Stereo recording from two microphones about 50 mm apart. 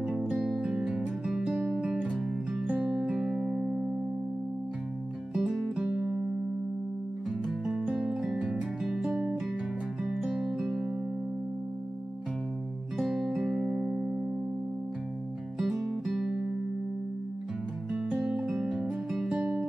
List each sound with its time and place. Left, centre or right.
0.1 s music: centre
0.4 s music: centre
1.9 s music: centre
3.1 s music: centre
5.3 s music: centre
7.6 s music: centre
13.0 s music: centre
13.6 s music: centre
15.6 s music: centre
16.3 s music: centre
17.9 s music: centre